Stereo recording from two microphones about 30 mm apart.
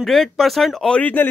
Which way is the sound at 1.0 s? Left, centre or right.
Left.